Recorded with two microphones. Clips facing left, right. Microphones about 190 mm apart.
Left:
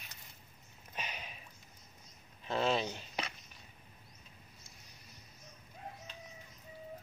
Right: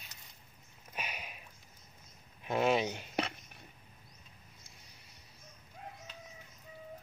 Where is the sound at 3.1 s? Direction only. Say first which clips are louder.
Right 6 dB; 60° right (ahead or behind).